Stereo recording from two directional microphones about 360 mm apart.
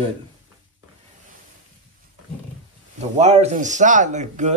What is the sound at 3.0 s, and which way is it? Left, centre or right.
Speech, centre.